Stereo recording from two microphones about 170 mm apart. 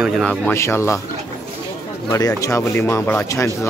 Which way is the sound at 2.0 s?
20° left (ahead or behind).